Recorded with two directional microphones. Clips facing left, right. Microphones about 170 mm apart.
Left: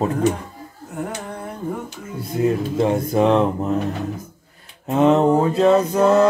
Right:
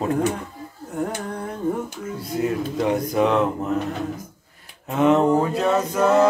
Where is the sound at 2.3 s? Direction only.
25° left (ahead or behind).